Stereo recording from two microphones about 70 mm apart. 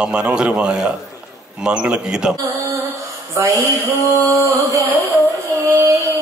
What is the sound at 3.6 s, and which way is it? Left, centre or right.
Music, right.